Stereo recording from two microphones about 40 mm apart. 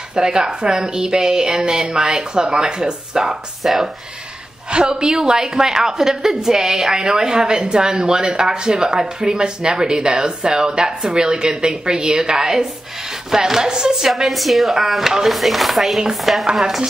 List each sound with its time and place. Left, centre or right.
0.1 s a woman's voice: centre
3.6 s speech: centre
4.6 s a woman's voice: right
13.3 s chopping: centre
14.0 s speech: centre